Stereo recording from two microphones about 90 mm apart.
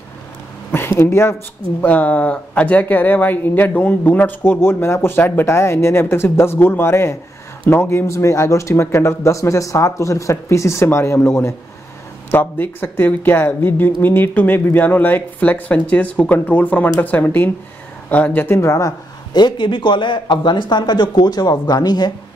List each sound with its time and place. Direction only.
0.7 s speech: 25° left (ahead or behind)
1.8 s speech: 15° left (ahead or behind)
18.6 s speech: 40° left (ahead or behind)
19.3 s speech: 55° left (ahead or behind)